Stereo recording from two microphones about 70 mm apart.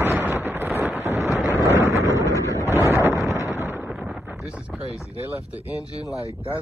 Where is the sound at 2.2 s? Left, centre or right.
Left.